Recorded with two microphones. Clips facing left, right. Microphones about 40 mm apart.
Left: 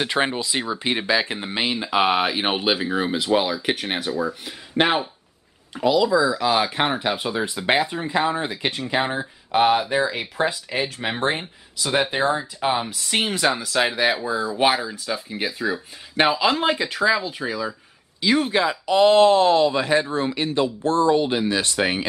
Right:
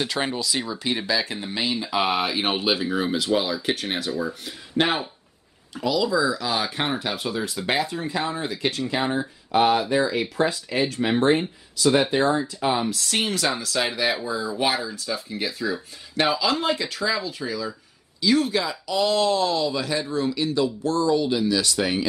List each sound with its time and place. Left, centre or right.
0.0 s speech: left